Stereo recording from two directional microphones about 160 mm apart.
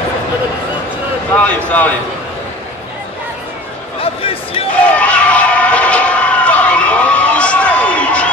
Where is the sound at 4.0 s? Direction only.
35° left (ahead or behind).